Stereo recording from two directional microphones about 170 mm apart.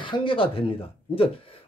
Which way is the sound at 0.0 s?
30° left (ahead or behind).